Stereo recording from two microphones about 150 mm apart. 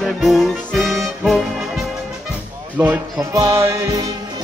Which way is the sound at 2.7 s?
15° right (ahead or behind).